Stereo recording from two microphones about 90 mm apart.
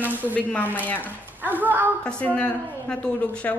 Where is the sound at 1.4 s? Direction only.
20° right (ahead or behind).